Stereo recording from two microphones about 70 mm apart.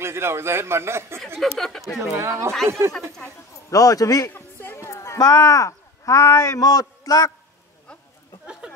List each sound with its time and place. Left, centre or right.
0.0 s a man's voice: right
1.4 s speech: centre
3.7 s a man's voice: left
4.3 s a sound: left
5.3 s speech: left
6.6 s a man's voice: left
8.5 s a sound: centre